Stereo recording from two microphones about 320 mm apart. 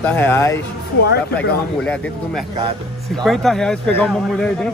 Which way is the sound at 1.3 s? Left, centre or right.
Centre.